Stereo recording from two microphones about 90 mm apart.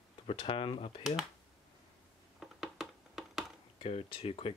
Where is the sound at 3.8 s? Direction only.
90° left.